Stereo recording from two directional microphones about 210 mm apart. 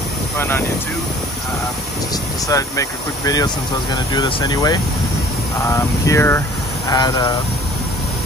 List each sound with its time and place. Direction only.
0.4 s speech: 10° left (ahead or behind)
2.4 s speech: 15° left (ahead or behind)